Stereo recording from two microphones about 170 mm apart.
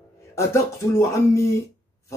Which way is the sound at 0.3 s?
15° left (ahead or behind).